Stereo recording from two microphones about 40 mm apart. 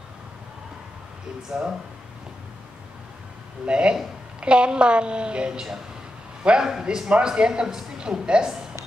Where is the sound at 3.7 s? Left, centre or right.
Right.